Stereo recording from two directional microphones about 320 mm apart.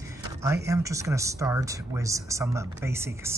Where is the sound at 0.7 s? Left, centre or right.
Centre.